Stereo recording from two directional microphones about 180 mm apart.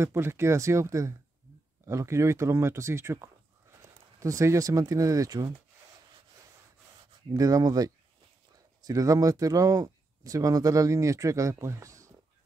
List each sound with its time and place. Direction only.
0.0 s speech: 15° right (ahead or behind)
7.2 s speech: 20° right (ahead or behind)